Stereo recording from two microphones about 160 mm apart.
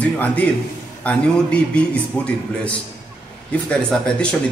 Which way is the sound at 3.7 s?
5° left (ahead or behind).